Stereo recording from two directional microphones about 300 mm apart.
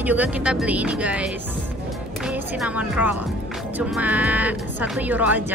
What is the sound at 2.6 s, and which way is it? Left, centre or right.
A woman's voice, centre.